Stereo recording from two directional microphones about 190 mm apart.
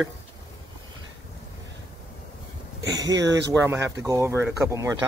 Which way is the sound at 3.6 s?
15° right (ahead or behind).